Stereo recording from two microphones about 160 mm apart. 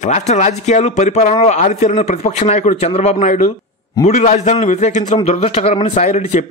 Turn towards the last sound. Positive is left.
turn(degrees=45)  # may be behind; listen again after turning